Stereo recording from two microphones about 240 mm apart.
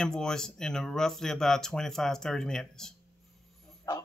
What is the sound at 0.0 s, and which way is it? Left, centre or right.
Speech, centre.